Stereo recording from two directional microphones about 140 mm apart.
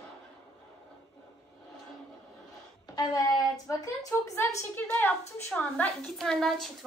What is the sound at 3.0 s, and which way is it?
A woman's voice, 25° left (ahead or behind).